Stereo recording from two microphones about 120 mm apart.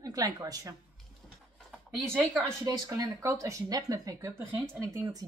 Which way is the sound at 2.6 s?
30° right (ahead or behind).